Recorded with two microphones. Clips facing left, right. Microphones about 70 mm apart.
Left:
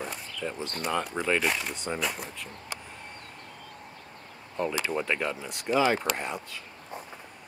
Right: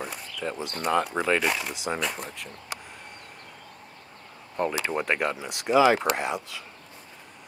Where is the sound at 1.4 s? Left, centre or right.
Centre.